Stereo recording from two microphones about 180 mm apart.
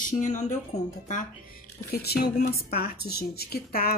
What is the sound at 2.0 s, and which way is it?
A woman's voice, 60° left (ahead or behind).